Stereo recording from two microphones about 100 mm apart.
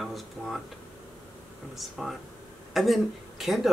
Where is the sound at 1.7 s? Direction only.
Centre (ahead or behind).